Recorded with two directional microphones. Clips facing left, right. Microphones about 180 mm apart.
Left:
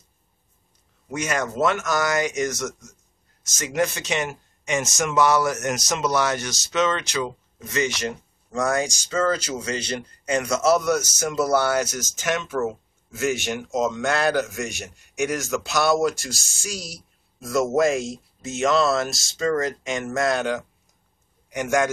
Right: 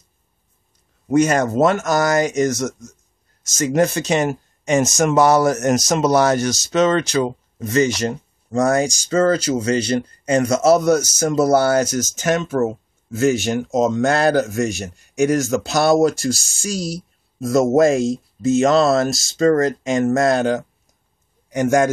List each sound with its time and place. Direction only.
1.0 s a man's voice: 40° right (ahead or behind)